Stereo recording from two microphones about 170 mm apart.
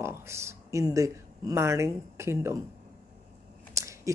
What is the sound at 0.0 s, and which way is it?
Speech, 15° right (ahead or behind).